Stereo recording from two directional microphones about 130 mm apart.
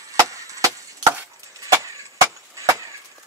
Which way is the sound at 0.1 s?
25° right (ahead or behind).